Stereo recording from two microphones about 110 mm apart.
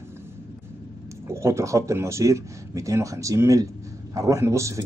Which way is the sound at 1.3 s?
25° right (ahead or behind).